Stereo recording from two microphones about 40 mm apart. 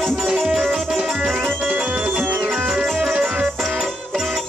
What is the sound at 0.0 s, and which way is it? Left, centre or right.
Music, centre.